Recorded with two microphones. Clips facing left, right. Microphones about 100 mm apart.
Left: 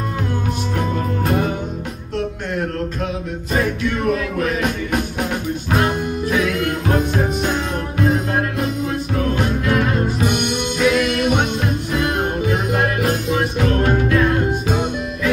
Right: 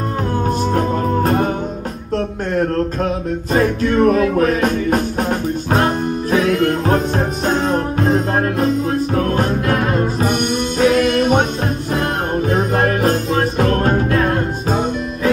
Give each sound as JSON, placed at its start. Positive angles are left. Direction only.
{"t": 0.7, "sound": "music", "side_deg": -35}
{"t": 2.5, "sound": "music", "side_deg": -35}